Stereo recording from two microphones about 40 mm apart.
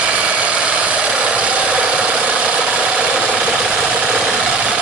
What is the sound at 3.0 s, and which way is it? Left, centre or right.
Ratchet, right.